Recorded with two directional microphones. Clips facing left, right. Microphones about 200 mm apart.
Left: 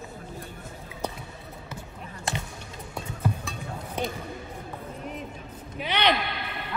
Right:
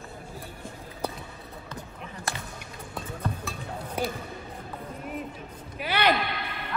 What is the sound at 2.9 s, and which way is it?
Music, centre (ahead or behind).